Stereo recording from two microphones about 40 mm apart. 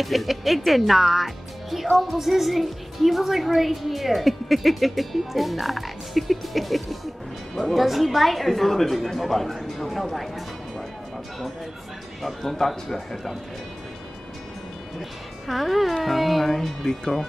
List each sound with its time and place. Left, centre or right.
0.0 s a woman's voice: centre
12.2 s a woman's voice: centre
15.0 s a woman's voice: centre
16.8 s speech: centre